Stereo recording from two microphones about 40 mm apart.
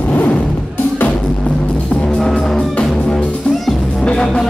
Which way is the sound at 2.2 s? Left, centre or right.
Centre.